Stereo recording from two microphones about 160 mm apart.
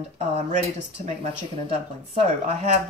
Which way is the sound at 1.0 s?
45° right (ahead or behind).